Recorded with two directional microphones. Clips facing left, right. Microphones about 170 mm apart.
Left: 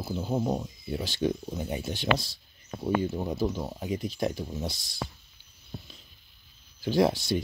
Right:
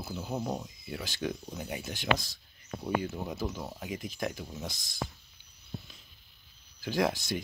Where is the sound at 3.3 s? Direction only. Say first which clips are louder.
Left 6 dB; 20° left (ahead or behind).